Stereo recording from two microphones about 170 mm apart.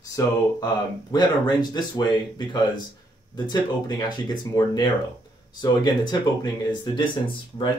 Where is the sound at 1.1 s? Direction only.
25° left (ahead or behind).